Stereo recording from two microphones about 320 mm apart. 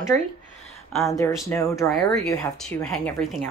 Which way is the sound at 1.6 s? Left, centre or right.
Centre.